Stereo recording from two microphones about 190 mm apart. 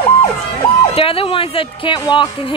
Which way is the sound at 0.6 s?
30° left (ahead or behind).